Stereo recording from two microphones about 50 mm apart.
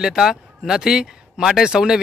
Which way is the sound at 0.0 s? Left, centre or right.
Centre.